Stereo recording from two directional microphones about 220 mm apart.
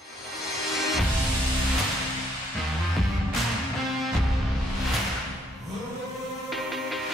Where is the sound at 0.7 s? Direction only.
Centre (ahead or behind).